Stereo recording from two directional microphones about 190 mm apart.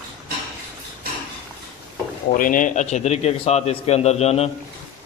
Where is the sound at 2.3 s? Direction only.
45° left (ahead or behind).